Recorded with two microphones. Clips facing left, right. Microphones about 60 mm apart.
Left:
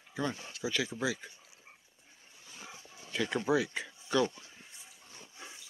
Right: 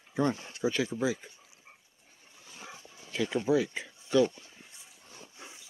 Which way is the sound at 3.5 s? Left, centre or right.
Left.